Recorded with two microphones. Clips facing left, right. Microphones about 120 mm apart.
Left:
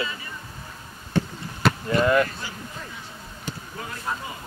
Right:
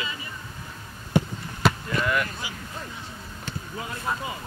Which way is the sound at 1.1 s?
15° right (ahead or behind).